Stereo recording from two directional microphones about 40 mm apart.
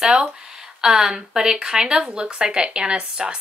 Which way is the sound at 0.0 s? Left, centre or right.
Right.